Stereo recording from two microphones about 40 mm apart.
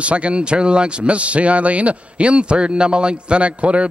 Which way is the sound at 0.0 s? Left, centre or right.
Right.